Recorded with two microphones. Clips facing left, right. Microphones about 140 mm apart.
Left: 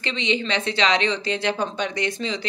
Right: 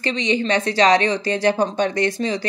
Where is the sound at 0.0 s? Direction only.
40° right (ahead or behind).